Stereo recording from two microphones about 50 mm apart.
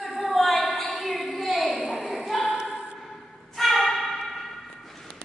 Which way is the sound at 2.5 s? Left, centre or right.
Centre.